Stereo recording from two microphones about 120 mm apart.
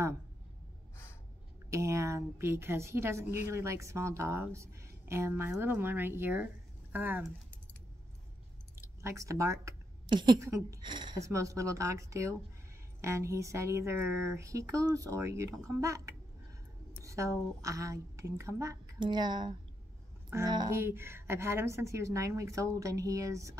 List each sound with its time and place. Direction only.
1.7 s a woman's voice: 25° right (ahead or behind)
8.7 s speech: 20° right (ahead or behind)
10.0 s speech: 40° right (ahead or behind)
10.4 s a woman's voice: 25° right (ahead or behind)
10.8 s speech: 40° right (ahead or behind)
11.1 s a woman's voice: 25° right (ahead or behind)
18.9 s speech: 40° right (ahead or behind)
20.7 s a woman's voice: 20° right (ahead or behind)